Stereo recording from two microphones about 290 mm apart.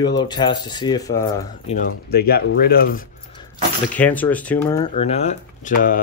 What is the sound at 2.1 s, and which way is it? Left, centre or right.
Speech, left.